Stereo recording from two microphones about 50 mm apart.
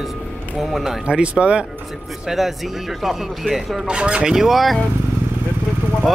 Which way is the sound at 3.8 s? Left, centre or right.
Centre.